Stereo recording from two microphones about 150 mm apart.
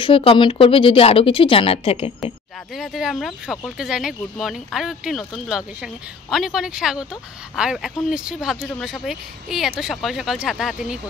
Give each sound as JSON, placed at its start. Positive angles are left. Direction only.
{"t": 0.0, "sound": "speech", "side_deg": 35}
{"t": 2.7, "sound": "speech", "side_deg": 0}